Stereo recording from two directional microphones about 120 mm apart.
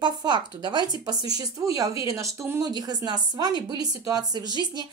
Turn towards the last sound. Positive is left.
turn(degrees=-35)  # may be behind; listen again after turning